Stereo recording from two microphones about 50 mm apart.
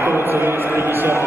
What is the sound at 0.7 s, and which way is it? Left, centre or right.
Speech, right.